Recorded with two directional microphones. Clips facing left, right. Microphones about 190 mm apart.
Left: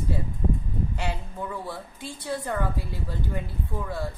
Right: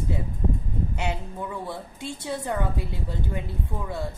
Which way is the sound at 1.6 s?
25° right (ahead or behind).